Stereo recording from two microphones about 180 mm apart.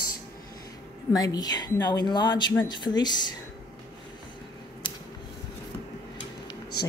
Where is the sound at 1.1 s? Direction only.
20° left (ahead or behind).